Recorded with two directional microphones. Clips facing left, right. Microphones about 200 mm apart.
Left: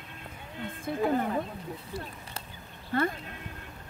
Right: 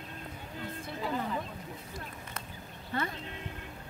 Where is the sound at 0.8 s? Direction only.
50° left (ahead or behind).